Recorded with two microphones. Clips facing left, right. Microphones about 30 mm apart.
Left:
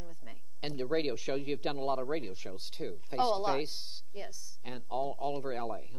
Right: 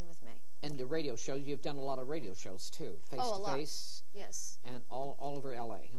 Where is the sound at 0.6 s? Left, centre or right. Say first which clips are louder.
Left 5 dB; left.